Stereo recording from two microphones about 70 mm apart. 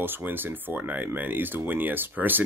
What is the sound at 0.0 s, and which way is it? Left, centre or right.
Speech, right.